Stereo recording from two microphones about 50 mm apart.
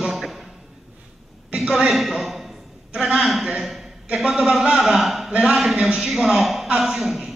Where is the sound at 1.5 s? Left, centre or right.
Centre.